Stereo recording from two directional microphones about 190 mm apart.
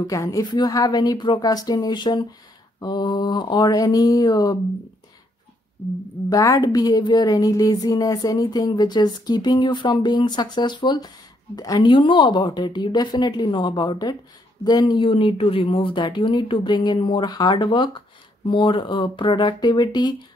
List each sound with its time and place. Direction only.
0.0 s speech: 15° left (ahead or behind)
6.3 s speech: 20° left (ahead or behind)